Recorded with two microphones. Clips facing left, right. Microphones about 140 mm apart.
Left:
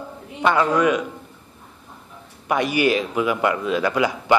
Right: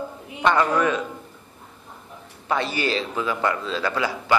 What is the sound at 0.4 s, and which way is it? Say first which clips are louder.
Speech: left 2 dB; 10° left (ahead or behind).